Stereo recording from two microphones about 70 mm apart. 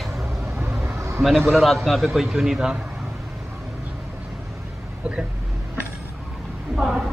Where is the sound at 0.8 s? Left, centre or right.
Right.